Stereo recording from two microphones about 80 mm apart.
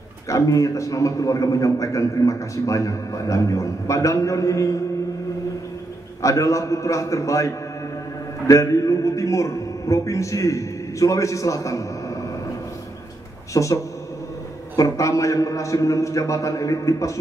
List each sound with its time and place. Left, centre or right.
0.3 s a man's voice: left
6.2 s a man's voice: left
13.5 s a man's voice: left
14.8 s a man's voice: left